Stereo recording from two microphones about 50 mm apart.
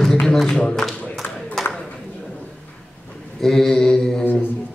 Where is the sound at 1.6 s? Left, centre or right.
Centre.